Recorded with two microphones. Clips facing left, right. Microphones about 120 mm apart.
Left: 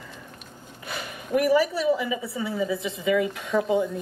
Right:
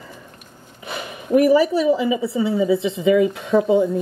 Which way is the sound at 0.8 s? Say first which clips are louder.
Right 7 dB; 25° right (ahead or behind).